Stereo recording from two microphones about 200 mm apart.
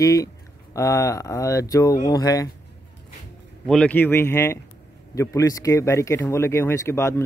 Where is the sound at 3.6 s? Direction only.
5° left (ahead or behind).